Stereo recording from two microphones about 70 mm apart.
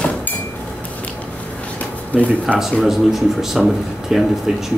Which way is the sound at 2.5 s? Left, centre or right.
Centre.